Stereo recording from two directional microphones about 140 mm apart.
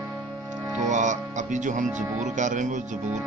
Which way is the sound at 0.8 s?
60° right (ahead or behind).